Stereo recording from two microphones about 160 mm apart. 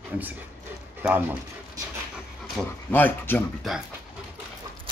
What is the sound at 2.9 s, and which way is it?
Speech, 10° left (ahead or behind).